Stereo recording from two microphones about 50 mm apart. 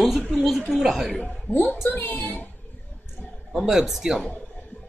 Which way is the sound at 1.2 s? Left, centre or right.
Left.